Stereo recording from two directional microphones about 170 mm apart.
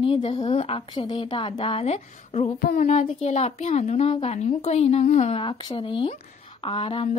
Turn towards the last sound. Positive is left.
turn(degrees=30)  # may be behind; listen again after turning